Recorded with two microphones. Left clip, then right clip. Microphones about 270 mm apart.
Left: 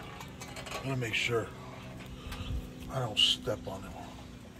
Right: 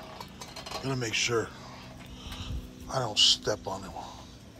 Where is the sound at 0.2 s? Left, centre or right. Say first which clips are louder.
Right 2 dB; right.